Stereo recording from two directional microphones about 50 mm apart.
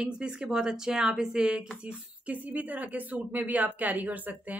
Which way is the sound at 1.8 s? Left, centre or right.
Right.